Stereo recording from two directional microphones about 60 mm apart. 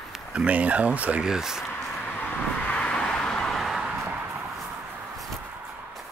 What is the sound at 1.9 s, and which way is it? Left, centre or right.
Vehicle, left.